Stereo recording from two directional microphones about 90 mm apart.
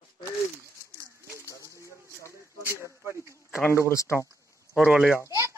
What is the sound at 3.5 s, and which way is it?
Speech, 30° left (ahead or behind).